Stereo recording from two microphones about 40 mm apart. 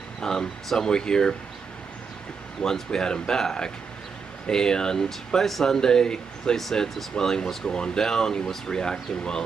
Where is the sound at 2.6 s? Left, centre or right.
Centre.